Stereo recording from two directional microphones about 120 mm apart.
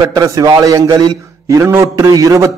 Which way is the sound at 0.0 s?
30° right (ahead or behind).